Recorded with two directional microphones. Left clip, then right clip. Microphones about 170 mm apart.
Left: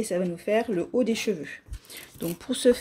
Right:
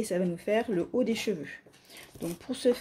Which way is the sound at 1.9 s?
25° left (ahead or behind).